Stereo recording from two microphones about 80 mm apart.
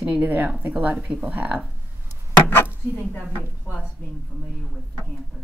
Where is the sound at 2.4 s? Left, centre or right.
Left.